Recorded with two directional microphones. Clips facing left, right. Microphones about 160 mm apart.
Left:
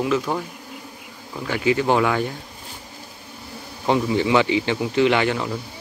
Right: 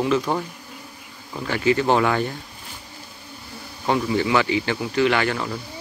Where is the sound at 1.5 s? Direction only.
10° left (ahead or behind).